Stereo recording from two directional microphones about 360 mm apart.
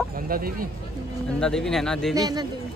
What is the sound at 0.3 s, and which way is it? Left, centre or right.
Speech, right.